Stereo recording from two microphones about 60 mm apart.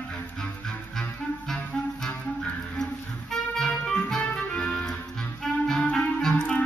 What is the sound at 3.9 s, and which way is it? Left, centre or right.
Music, centre.